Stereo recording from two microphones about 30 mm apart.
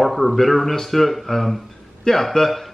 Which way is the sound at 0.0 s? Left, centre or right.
Centre.